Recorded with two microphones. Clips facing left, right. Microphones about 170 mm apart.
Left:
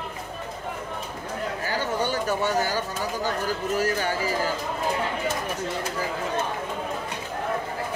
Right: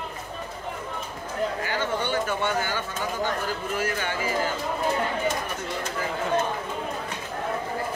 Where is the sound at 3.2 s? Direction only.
40° left (ahead or behind).